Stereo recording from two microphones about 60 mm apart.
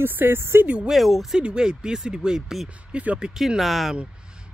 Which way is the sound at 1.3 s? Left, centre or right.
Centre.